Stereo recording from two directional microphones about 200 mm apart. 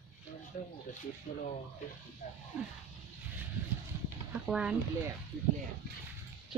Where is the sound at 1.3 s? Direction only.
45° left (ahead or behind).